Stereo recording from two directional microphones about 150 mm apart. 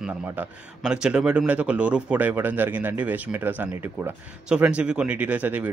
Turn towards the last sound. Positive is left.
turn(degrees=-10)  # may be behind; listen again after turning